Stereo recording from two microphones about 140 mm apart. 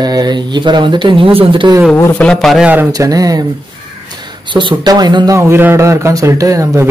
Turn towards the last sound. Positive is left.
turn(degrees=-20)  # may be behind; listen again after turning